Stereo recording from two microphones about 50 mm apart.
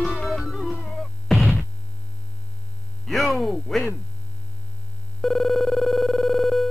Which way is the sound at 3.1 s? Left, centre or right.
Centre.